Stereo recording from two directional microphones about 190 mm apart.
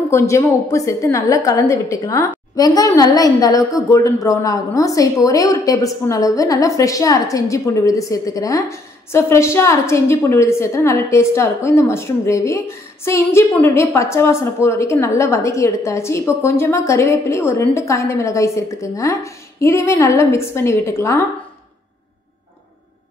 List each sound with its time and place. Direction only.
0.1 s a woman's voice: 15° left (ahead or behind)